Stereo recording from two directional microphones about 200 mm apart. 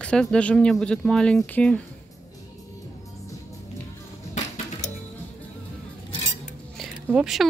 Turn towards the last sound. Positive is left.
turn(degrees=0)  # may be behind; listen again after turning